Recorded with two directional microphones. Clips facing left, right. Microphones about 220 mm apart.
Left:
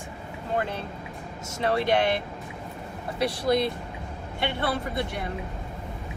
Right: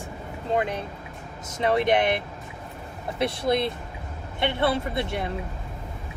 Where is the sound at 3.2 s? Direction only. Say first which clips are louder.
Even; 25° right (ahead or behind).